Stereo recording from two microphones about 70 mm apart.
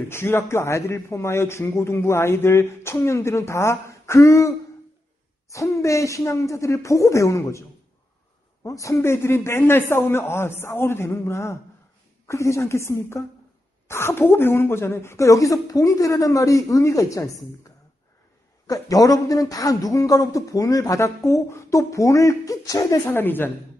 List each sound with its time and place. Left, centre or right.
0.1 s a man's voice: left
8.6 s a man's voice: left
18.7 s speech: left
21.0 s a woman's voice: left
23.0 s a woman's voice: left